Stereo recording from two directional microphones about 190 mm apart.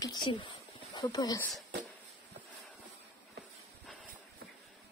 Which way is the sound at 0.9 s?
20° left (ahead or behind).